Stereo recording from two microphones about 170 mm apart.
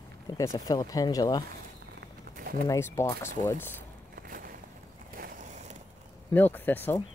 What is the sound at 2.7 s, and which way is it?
Speech, 20° left (ahead or behind).